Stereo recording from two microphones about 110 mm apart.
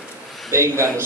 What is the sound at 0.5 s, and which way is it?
Speech, 25° right (ahead or behind).